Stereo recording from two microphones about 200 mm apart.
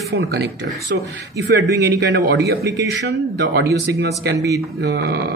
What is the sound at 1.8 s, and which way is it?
Speech, 55° right (ahead or behind).